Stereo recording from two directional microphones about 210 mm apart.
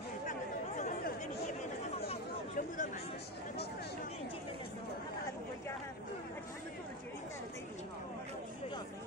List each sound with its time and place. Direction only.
0.3 s chatter: 35° left (ahead or behind)